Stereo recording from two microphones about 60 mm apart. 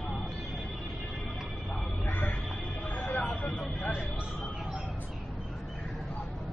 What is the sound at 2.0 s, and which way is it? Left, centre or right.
Music, left.